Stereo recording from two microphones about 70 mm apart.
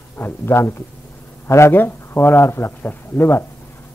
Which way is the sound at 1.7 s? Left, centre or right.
Left.